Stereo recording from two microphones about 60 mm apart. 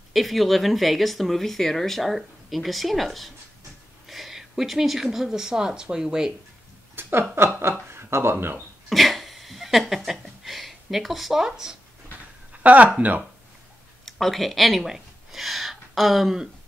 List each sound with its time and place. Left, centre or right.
0.1 s speech: centre
7.0 s speech: right
8.8 s a sound: centre
12.6 s speech: right
14.0 s speech: centre